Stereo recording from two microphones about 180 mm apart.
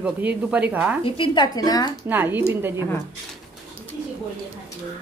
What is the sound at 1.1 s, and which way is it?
Speech, 25° left (ahead or behind).